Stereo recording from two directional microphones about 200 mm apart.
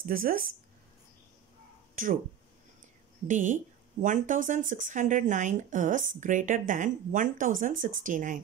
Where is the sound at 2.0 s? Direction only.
45° right (ahead or behind).